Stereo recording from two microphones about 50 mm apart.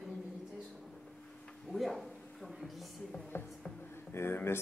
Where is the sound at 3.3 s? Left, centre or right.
Left.